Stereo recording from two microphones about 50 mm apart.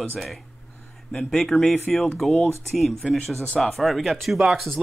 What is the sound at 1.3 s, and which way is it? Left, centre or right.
Speech, centre.